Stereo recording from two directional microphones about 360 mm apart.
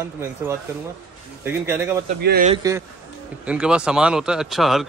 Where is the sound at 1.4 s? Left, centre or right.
Centre.